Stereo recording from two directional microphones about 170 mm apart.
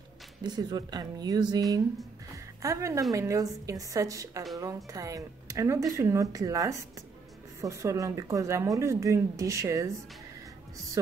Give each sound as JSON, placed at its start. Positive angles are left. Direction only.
{"t": 0.4, "sound": "speech", "side_deg": -25}